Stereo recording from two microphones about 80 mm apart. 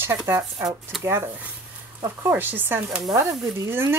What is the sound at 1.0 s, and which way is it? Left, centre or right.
Speech, right.